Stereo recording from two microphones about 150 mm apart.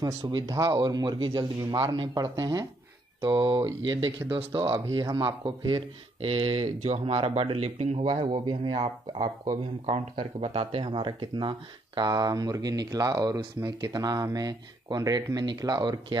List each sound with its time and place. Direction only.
0.0 s speech: 25° right (ahead or behind)
4.8 s speech: 25° right (ahead or behind); by 8.0 s 45° right (ahead or behind)
8.0 s speech: 30° right (ahead or behind)
9.8 s speech: 40° right (ahead or behind)